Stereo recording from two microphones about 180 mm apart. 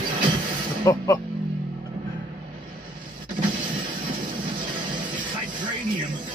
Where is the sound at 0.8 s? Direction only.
15° left (ahead or behind).